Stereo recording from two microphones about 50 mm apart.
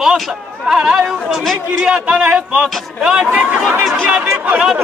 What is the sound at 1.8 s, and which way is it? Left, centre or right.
A man's voice, centre.